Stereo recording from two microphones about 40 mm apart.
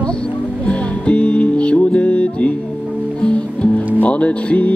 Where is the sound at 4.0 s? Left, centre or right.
Left.